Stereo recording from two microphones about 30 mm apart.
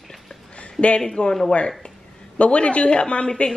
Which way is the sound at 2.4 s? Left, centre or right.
Left.